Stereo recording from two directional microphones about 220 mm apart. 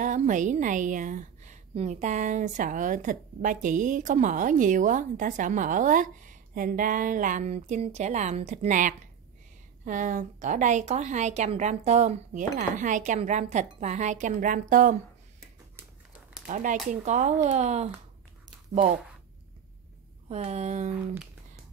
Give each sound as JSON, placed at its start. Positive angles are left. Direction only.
{"t": 0.0, "sound": "a woman's voice", "side_deg": -35}
{"t": 16.4, "sound": "a woman's voice", "side_deg": -35}
{"t": 20.2, "sound": "a woman's voice", "side_deg": -30}